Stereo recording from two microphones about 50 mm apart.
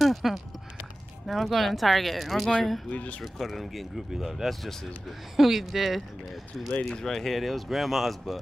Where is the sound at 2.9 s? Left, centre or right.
Left.